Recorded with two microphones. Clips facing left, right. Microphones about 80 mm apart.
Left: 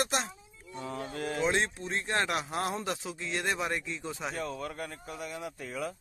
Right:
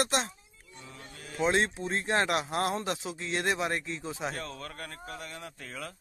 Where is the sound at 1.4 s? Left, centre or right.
Centre.